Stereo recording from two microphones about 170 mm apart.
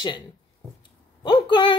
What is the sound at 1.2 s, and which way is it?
Speech, 25° left (ahead or behind).